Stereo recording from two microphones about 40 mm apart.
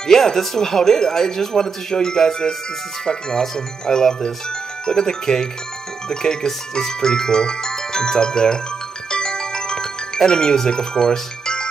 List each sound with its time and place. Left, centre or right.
0.0 s speech: centre
9.1 s glockenspiel: centre
10.7 s speech: centre